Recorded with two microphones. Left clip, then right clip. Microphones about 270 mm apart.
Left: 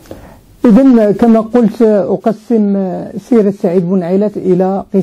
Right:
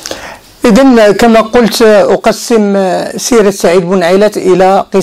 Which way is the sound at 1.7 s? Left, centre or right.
Right.